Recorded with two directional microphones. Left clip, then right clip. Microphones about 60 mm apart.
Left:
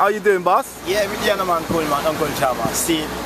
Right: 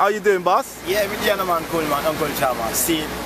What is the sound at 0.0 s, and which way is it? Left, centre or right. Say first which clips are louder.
Speech: left 1 dB; centre.